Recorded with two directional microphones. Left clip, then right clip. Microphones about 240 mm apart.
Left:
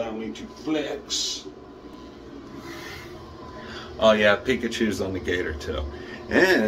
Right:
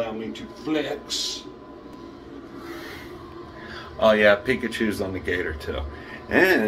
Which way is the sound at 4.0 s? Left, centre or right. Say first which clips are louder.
Right 1 dB; centre.